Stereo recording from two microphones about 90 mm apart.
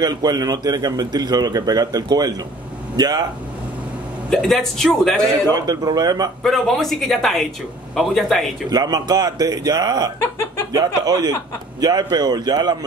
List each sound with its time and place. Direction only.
0.0 s speech: 45° right (ahead or behind)
4.3 s speech: 5° left (ahead or behind)
5.5 s speech: 45° right (ahead or behind)
6.4 s speech: centre (ahead or behind)
8.6 s speech: 45° right (ahead or behind)